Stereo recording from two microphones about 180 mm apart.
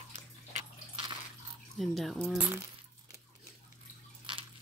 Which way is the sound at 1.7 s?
Centre (ahead or behind).